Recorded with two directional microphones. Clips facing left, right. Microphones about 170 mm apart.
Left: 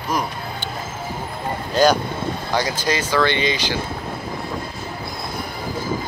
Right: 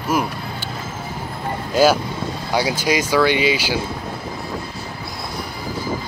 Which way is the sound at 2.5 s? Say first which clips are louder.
Right 3 dB; 10° right (ahead or behind).